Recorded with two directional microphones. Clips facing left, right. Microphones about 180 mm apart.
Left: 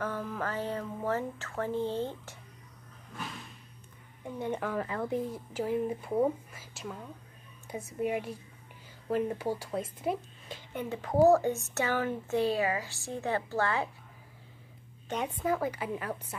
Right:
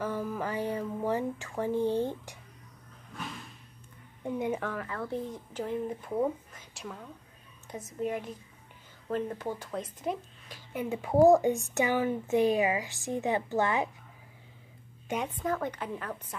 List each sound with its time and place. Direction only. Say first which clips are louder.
0.0 s speech: right 2 dB; 10° right (ahead or behind)
3.1 s vehicle: right 1 dB; centre (ahead or behind)
4.7 s speech: left 3 dB; 20° left (ahead or behind)
10.7 s speech: right 3 dB; 10° right (ahead or behind)
15.2 s speech: left 4 dB; 10° left (ahead or behind)